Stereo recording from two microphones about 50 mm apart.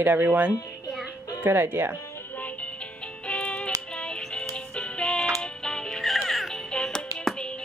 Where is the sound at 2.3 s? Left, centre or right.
Left.